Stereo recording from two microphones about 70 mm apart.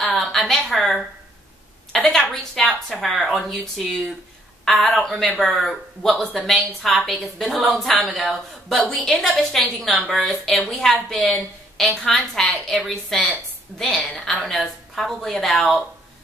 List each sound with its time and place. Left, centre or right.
0.0 s a sound: centre
1.9 s a woman's voice: centre
5.1 s a woman's voice: centre